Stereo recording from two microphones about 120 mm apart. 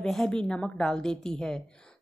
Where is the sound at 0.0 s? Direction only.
5° left (ahead or behind).